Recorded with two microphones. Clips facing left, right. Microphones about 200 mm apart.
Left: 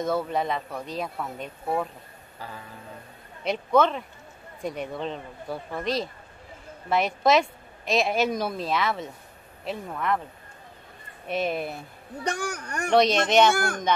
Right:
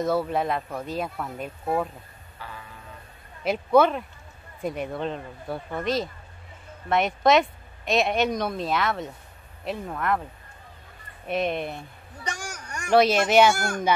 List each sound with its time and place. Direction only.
0.0 s a woman's voice: centre (ahead or behind)
2.4 s music: 40° left (ahead or behind)
3.4 s a woman's voice: 5° right (ahead or behind)
11.2 s a woman's voice: centre (ahead or behind)
12.2 s a sound: 60° left (ahead or behind)
12.9 s speech: 5° right (ahead or behind)